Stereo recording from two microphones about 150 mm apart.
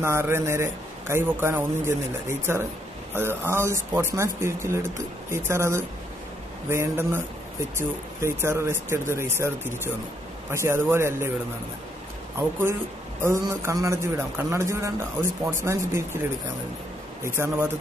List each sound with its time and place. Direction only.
0.0 s a man's voice: 15° right (ahead or behind)
13.2 s a man's voice: 20° right (ahead or behind)
17.2 s a man's voice: 20° right (ahead or behind)